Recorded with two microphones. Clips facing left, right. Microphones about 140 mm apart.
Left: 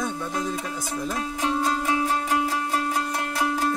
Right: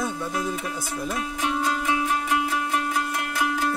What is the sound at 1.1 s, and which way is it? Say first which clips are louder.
Music: left 1 dB; 30° left (ahead or behind).